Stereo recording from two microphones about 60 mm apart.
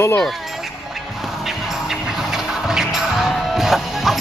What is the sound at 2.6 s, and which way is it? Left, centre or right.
Music, centre.